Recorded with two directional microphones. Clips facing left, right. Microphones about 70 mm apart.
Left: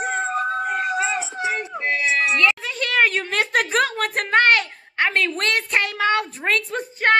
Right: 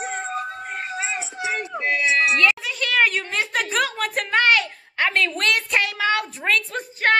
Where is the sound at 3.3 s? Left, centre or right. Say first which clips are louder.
Left 3 dB; left.